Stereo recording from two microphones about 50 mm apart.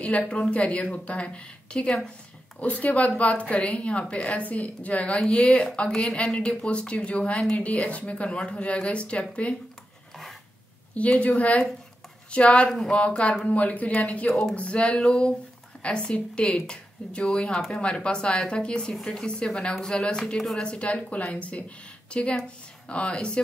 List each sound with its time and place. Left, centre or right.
0.3 s a woman's voice: left
11.0 s a woman's voice: left
12.6 s speech: centre
12.9 s a woman's voice: left